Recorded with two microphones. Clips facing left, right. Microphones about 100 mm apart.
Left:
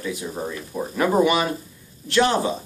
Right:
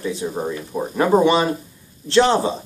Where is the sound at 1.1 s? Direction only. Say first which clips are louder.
Right 4 dB; 30° right (ahead or behind).